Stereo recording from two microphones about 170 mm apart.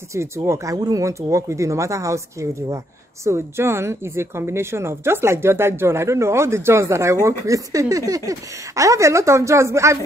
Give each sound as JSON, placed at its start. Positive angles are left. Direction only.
{"t": 0.1, "sound": "speech", "side_deg": -15}